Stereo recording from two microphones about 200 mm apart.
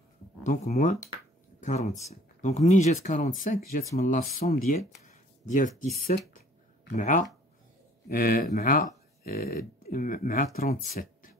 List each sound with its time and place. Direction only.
0.4 s speech: 40° left (ahead or behind)
7.0 s speech: 40° left (ahead or behind)